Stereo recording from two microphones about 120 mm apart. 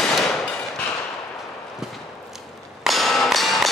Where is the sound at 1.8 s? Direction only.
5° right (ahead or behind).